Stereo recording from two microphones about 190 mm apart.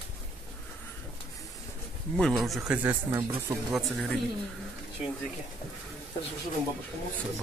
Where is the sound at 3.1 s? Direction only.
20° right (ahead or behind).